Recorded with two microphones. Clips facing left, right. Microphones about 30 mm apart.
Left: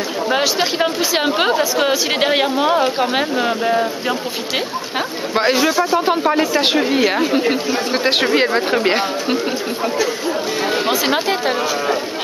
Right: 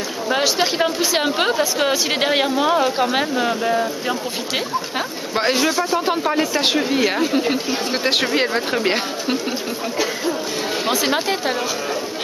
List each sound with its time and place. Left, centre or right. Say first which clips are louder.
0.3 s speech: even; centre
5.3 s speech: left 3 dB; centre
10.9 s speech: right 1 dB; centre